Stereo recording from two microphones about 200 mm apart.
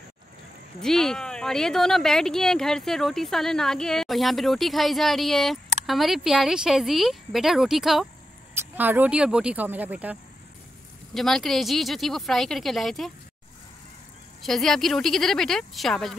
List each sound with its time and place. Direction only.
0.7 s speech: centre (ahead or behind)
11.1 s speech: centre (ahead or behind)
14.4 s speech: centre (ahead or behind)